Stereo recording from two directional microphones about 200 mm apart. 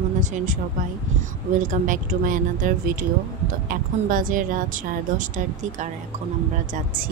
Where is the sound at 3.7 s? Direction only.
40° right (ahead or behind).